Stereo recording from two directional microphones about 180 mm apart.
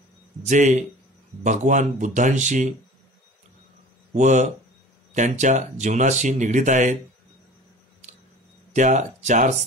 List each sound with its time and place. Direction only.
0.4 s speech: 40° right (ahead or behind)
4.1 s speech: 40° right (ahead or behind)
8.7 s speech: 45° right (ahead or behind)